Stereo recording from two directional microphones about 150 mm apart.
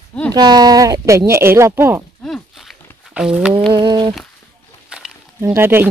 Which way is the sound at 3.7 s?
30° right (ahead or behind).